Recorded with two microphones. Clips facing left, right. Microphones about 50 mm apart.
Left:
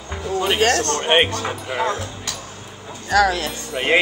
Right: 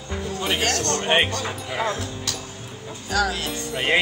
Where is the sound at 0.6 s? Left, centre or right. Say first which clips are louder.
Left 6 dB; left.